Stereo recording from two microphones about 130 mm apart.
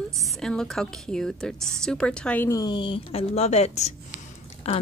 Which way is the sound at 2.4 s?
30° left (ahead or behind).